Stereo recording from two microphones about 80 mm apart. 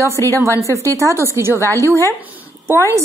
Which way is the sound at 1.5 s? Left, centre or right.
Left.